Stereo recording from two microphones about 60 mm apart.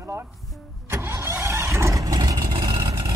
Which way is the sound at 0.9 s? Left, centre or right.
Right.